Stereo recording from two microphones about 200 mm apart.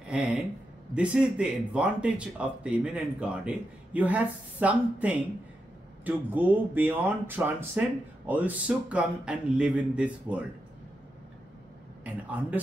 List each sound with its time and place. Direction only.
0.1 s speech: 5° right (ahead or behind)
12.0 s speech: 5° right (ahead or behind)